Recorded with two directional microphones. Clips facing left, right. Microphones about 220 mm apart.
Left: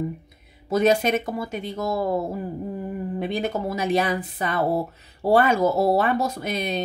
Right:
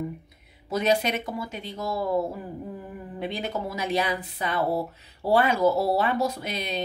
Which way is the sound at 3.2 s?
50° left (ahead or behind).